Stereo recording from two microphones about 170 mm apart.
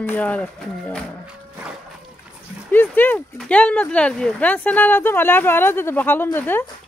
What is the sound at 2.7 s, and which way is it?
Speech, 10° left (ahead or behind).